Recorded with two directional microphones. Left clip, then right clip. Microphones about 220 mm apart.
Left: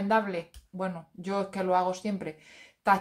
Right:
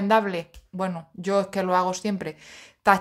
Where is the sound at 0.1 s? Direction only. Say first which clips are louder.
Right 6 dB; 45° right (ahead or behind).